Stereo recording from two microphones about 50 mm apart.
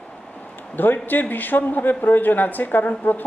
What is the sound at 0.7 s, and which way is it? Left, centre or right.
A woman's voice, left.